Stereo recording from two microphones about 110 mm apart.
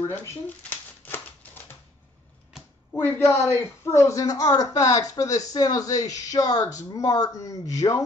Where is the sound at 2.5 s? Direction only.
5° right (ahead or behind).